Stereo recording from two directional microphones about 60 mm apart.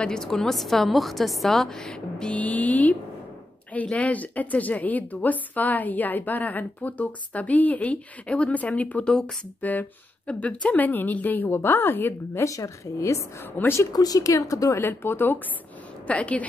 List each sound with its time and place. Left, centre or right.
0.0 s a woman's voice: centre
2.3 s a woman's voice: left
12.4 s speech: left
13.6 s a woman's voice: left
13.9 s speech: left
14.8 s a woman's voice: left
16.1 s a woman's voice: left